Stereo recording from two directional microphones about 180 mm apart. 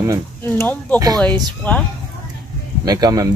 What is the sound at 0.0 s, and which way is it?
Speech, 20° right (ahead or behind).